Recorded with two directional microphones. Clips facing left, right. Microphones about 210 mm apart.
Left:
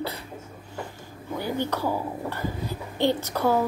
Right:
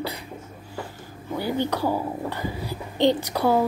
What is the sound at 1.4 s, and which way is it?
A woman's voice, 15° right (ahead or behind).